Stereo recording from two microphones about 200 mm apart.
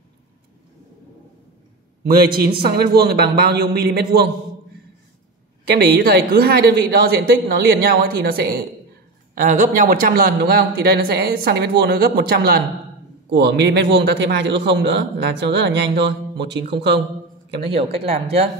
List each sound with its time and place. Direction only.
2.0 s speech: 50° right (ahead or behind)
5.7 s speech: 55° right (ahead or behind)